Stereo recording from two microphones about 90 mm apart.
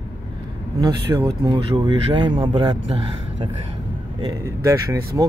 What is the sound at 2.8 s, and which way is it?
Speech, 90° right.